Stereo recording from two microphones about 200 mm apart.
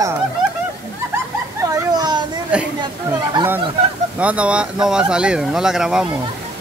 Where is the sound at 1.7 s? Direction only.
20° right (ahead or behind).